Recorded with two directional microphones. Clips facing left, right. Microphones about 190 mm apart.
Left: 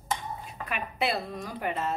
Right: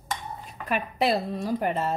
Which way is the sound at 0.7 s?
35° right (ahead or behind).